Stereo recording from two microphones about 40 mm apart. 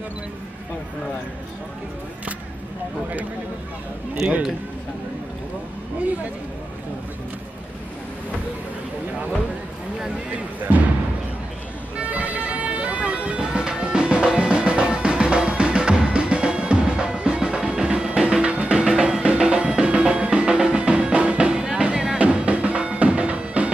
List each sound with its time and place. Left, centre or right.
10.3 s speech: right
12.0 s bagpipes: right
18.9 s music: centre
22.2 s music: right